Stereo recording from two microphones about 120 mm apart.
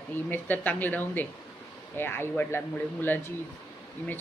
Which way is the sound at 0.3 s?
15° left (ahead or behind).